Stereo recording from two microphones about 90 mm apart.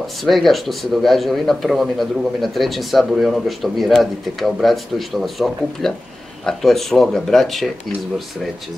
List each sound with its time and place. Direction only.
0.0 s a man's voice: centre (ahead or behind)